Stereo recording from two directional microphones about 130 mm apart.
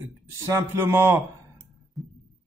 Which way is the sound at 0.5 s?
20° right (ahead or behind).